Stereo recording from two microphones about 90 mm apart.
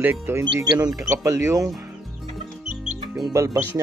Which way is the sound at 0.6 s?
50° right (ahead or behind).